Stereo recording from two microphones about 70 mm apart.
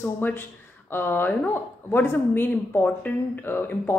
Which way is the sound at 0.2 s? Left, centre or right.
Left.